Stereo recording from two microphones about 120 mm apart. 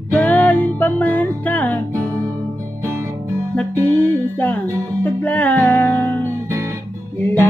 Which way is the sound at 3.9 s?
15° left (ahead or behind).